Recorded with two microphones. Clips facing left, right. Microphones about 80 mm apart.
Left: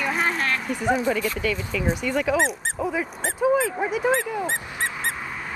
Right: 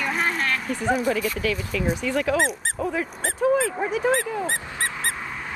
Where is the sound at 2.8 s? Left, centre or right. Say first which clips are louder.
Even; centre.